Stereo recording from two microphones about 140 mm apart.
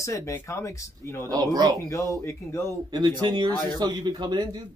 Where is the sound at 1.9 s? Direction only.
20° left (ahead or behind).